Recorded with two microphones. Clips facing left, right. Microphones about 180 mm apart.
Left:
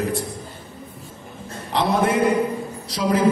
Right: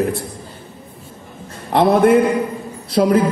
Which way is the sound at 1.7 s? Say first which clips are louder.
Right 8 dB; 55° right (ahead or behind).